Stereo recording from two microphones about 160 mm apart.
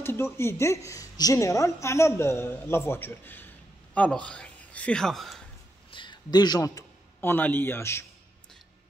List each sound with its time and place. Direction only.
0.0 s a woman's voice: 15° left (ahead or behind)
5.9 s a man's voice: 30° left (ahead or behind)